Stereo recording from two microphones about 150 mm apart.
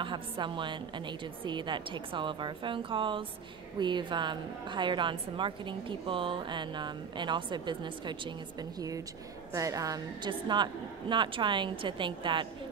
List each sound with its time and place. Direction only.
0.0 s a woman's voice: 30° right (ahead or behind)